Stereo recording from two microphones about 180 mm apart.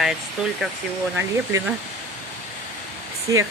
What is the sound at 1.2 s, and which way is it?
Speech, 15° right (ahead or behind).